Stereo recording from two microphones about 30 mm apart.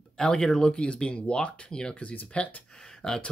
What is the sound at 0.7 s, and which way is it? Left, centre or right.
Speech, left.